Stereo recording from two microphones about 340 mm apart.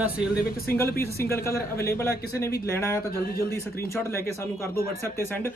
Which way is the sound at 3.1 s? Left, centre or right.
Left.